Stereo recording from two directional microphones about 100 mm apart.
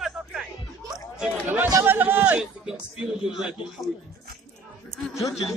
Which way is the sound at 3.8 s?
Centre (ahead or behind).